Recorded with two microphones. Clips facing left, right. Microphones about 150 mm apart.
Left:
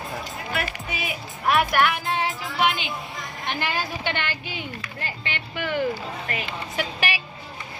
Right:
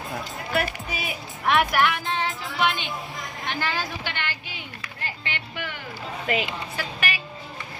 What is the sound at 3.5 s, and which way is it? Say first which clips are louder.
Speech: left 1 dB; 15° left (ahead or behind).